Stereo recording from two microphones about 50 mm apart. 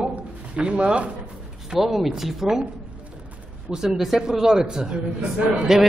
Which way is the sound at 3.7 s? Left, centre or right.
Centre.